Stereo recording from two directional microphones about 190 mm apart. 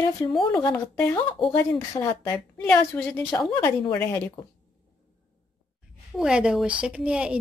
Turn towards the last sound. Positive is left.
turn(degrees=-5)  # may be behind; listen again after turning